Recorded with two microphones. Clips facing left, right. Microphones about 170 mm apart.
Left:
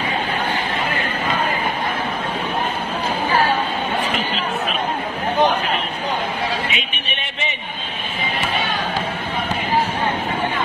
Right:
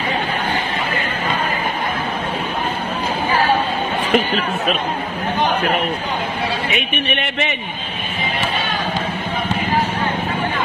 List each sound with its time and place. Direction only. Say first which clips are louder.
6.7 s a man's voice: right 7 dB; 55° right (ahead or behind)